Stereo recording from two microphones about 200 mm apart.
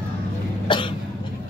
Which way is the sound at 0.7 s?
25° left (ahead or behind).